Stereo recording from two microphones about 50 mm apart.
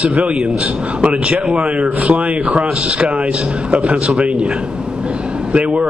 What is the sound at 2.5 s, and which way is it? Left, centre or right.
A man's voice, right.